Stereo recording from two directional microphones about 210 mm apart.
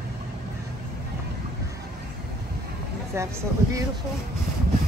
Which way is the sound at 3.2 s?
15° right (ahead or behind).